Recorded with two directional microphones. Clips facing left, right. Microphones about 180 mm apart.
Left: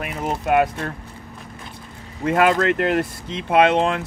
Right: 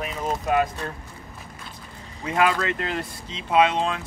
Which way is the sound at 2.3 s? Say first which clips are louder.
Left 5 dB; 55° left (ahead or behind).